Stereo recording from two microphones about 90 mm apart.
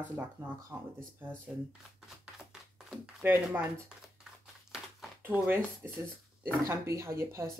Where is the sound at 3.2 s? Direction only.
25° right (ahead or behind).